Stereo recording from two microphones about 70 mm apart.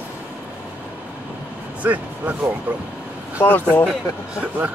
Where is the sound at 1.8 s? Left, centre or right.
Right.